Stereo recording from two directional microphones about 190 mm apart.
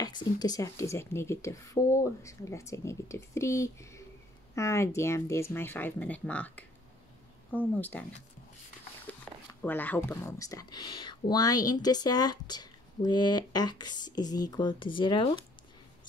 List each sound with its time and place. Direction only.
0.0 s speech: 20° left (ahead or behind)
9.0 s speech: 10° left (ahead or behind); by 15.4 s 25° left (ahead or behind)